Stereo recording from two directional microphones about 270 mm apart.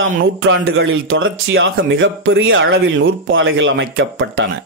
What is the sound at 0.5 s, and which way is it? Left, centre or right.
Speech, right.